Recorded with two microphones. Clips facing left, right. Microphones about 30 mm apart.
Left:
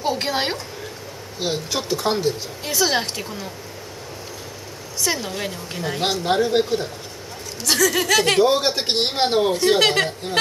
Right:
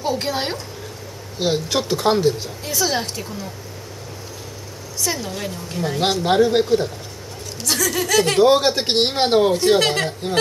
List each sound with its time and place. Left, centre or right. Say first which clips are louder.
0.0 s a woman's voice: even; centre
1.4 s speech: right 4 dB; centre
2.6 s a woman's voice: left 1 dB; centre
5.0 s a woman's voice: left 1 dB; centre
5.8 s speech: right 3 dB; centre
6.2 s speech: right 3 dB; centre
7.8 s a woman's voice: left 1 dB; centre
8.4 s speech: right 3 dB; centre